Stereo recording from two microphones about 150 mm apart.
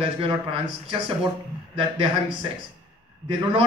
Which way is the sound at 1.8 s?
35° right (ahead or behind).